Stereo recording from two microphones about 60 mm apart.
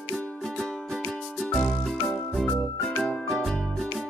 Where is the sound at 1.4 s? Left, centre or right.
Centre.